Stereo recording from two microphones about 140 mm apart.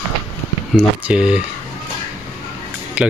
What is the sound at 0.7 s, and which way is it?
Speech, 5° right (ahead or behind).